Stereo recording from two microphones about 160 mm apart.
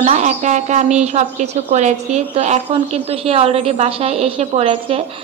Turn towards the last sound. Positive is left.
turn(degrees=-40)  # may be behind; listen again after turning